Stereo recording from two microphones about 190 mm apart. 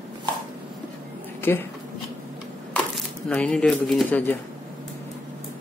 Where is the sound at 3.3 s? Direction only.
5° left (ahead or behind).